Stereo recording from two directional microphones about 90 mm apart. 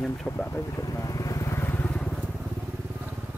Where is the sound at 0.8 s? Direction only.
40° left (ahead or behind).